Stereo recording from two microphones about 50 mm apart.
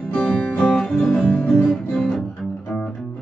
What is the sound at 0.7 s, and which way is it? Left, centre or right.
Music, centre.